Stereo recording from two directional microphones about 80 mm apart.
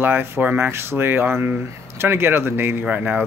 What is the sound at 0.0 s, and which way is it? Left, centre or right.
Speech, right.